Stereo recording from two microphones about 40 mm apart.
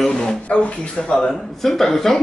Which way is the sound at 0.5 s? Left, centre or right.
Left.